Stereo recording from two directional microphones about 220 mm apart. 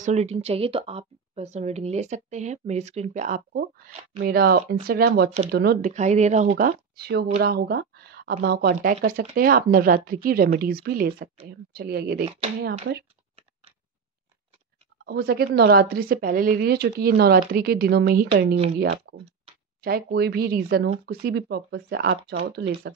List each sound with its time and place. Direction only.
0.0 s a woman's voice: 30° right (ahead or behind); by 12.3 s 45° right (ahead or behind)
15.0 s a woman's voice: 45° right (ahead or behind)
19.1 s clicking: 45° right (ahead or behind)
19.8 s a woman's voice: 45° right (ahead or behind)